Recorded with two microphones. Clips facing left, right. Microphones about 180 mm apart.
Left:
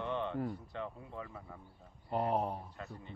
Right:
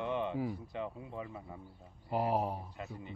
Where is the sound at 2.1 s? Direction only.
5° right (ahead or behind).